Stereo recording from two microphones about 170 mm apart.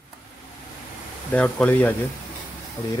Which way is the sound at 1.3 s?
10° left (ahead or behind).